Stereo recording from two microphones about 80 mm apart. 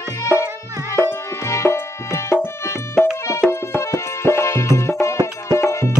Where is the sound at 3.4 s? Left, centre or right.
Left.